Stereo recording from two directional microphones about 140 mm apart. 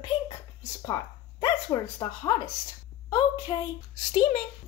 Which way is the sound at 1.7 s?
30° left (ahead or behind).